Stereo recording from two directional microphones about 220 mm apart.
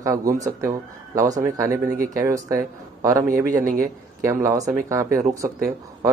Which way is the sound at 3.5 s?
35° right (ahead or behind).